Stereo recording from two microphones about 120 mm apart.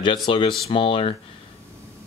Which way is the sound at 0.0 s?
40° left (ahead or behind).